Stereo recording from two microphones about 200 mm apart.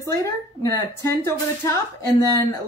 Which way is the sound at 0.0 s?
15° left (ahead or behind).